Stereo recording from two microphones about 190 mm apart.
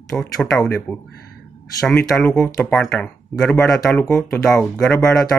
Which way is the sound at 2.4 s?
15° left (ahead or behind).